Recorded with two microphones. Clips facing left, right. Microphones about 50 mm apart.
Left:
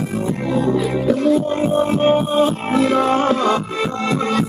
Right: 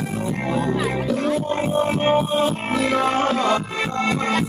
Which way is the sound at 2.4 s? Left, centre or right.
Left.